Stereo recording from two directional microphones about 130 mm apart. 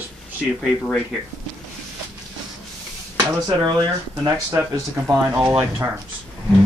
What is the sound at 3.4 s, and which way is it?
Speech, 30° right (ahead or behind).